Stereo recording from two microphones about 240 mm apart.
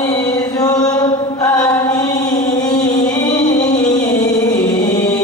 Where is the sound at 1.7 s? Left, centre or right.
Centre.